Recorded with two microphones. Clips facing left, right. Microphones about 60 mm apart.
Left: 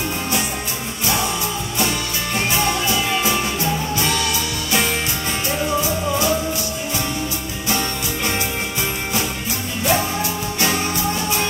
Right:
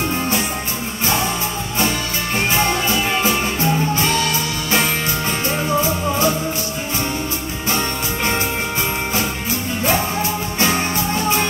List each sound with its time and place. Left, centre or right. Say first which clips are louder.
1.0 s music: right 2 dB; right
2.3 s music: right 2 dB; right
9.8 s music: even; right